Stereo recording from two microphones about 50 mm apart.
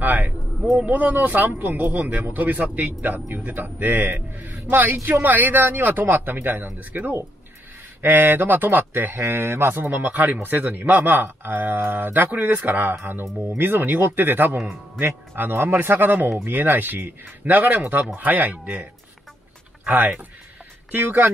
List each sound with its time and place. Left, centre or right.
0.0 s a sound: right
0.7 s a man's voice: right
9.2 s a man's voice: right